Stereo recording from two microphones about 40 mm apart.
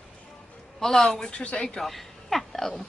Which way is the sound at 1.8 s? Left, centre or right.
Centre.